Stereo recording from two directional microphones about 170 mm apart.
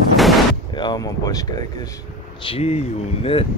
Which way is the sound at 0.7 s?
25° left (ahead or behind).